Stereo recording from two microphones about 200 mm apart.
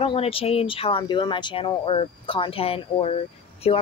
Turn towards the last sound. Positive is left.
turn(degrees=30)  # may be behind; listen again after turning